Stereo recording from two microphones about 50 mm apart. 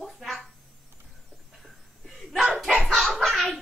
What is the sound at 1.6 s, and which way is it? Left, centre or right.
Laughter, centre.